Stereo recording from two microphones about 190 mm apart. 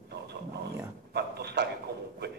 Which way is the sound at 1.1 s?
60° right (ahead or behind).